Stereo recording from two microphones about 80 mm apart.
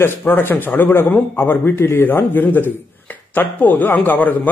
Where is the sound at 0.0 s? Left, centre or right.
Left.